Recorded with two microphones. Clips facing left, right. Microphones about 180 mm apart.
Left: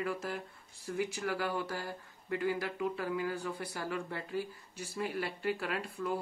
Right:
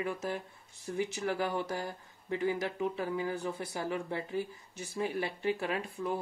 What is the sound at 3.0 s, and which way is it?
Speech, 20° right (ahead or behind).